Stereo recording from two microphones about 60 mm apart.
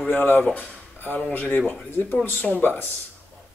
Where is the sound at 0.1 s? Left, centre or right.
Left.